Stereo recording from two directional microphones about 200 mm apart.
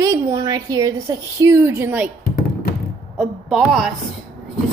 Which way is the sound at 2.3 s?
45° left (ahead or behind).